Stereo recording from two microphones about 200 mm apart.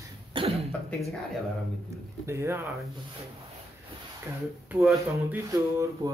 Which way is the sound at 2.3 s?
15° right (ahead or behind).